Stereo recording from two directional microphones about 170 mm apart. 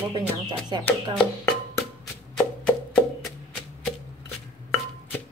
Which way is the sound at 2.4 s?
5° left (ahead or behind).